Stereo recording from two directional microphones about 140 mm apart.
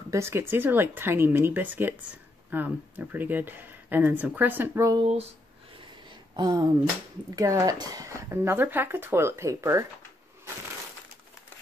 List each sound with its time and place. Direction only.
0.1 s speech: 20° right (ahead or behind)
5.0 s speech: 45° right (ahead or behind)
6.0 s a sound: 30° right (ahead or behind)
7.3 s speech: 25° right (ahead or behind)